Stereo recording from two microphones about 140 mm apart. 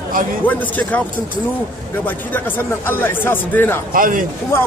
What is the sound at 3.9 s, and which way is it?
Speech, 75° right (ahead or behind).